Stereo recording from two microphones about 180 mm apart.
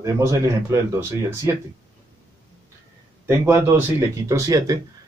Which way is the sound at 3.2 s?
15° right (ahead or behind).